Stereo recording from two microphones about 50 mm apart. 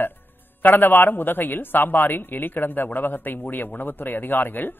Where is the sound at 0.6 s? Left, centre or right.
Left.